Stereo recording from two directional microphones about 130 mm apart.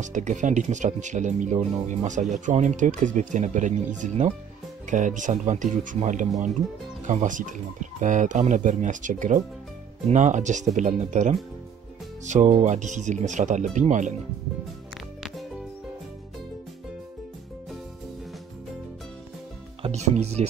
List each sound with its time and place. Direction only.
0.0 s speech: 70° right (ahead or behind)
19.8 s speech: 55° right (ahead or behind)